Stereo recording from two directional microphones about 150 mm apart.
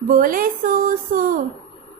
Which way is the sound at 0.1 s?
70° right (ahead or behind).